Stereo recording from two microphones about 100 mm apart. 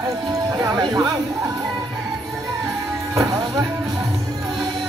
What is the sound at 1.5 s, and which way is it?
Music, 45° right (ahead or behind).